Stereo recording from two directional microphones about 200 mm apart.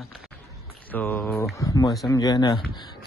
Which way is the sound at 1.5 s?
15° left (ahead or behind).